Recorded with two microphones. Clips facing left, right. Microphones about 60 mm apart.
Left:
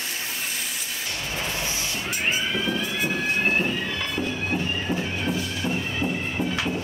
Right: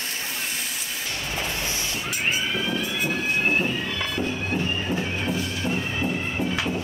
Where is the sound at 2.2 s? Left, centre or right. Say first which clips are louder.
Even; centre.